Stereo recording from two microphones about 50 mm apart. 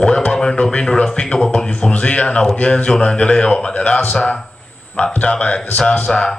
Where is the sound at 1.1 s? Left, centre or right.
Centre.